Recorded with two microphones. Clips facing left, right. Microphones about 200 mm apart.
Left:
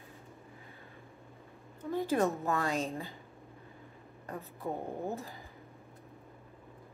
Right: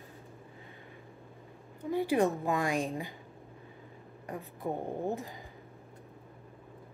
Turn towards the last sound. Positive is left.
turn(degrees=-15)  # may be behind; listen again after turning